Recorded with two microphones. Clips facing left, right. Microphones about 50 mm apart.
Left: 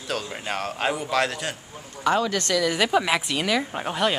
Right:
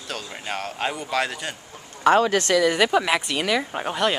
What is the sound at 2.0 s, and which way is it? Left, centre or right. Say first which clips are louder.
Speech: right 5 dB; right.